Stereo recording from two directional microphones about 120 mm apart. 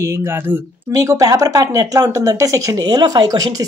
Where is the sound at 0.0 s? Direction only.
20° right (ahead or behind).